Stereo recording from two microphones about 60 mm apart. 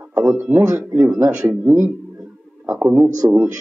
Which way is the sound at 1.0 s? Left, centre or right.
Right.